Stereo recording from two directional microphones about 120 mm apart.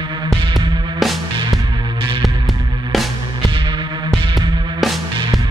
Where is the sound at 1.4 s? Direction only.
35° right (ahead or behind).